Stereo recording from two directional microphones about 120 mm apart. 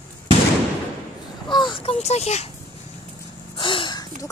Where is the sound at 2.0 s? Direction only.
65° left (ahead or behind).